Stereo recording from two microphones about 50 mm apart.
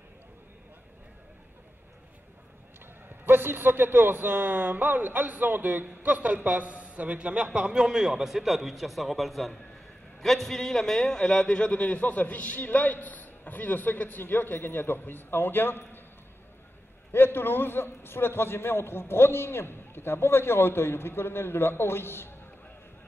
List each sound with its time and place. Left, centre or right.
3.3 s a man's voice: right; by 16.0 s left
17.1 s a man's voice: left